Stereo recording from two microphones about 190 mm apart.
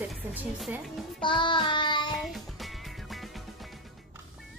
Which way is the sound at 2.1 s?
Centre (ahead or behind).